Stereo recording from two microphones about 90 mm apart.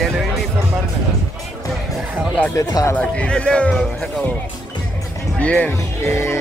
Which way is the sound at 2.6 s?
45° left (ahead or behind).